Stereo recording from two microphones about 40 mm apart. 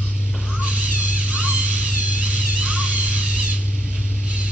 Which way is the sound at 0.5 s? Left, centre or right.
Right.